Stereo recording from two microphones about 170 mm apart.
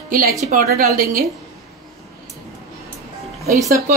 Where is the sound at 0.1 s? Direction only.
55° right (ahead or behind).